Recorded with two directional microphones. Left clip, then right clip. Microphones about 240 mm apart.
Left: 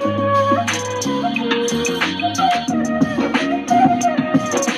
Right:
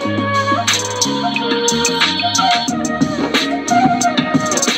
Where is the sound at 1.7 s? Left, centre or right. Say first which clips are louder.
Right 5 dB; centre.